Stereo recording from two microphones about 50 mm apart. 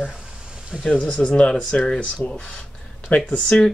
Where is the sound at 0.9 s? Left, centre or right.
Left.